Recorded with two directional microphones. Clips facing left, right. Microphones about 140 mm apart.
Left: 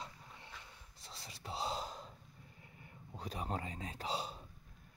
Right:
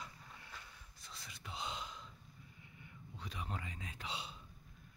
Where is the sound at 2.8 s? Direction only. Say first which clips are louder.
Left 4 dB; 40° left (ahead or behind).